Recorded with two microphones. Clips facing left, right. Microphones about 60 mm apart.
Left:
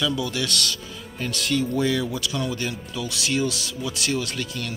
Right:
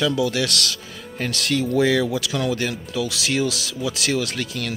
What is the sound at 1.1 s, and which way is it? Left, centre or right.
Speech, right.